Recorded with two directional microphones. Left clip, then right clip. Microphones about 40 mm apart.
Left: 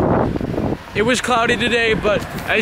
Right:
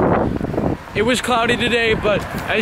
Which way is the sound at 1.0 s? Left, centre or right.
Centre.